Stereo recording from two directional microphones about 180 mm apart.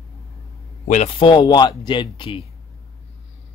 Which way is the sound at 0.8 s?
35° left (ahead or behind).